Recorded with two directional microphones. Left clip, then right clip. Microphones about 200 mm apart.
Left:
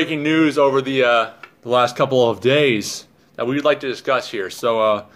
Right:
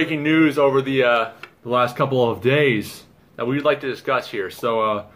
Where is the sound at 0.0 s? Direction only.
40° left (ahead or behind).